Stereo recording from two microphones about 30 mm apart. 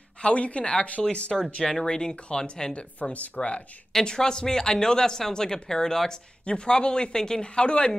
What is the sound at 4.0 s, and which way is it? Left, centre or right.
Speech, left.